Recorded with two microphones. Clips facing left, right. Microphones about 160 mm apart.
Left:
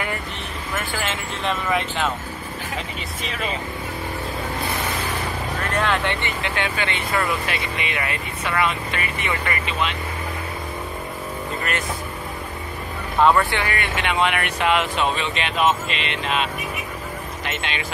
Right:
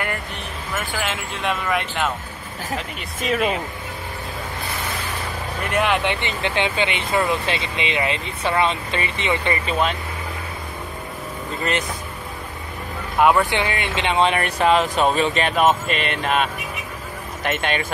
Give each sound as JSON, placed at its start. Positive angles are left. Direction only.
{"t": 0.9, "sound": "speech", "side_deg": -5}
{"t": 5.6, "sound": "speech", "side_deg": -15}
{"t": 9.7, "sound": "speech", "side_deg": -40}
{"t": 13.2, "sound": "speech", "side_deg": -15}